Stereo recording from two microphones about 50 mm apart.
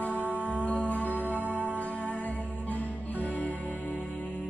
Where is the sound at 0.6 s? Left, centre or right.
Left.